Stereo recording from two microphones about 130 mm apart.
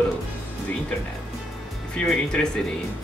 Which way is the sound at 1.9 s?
5° left (ahead or behind).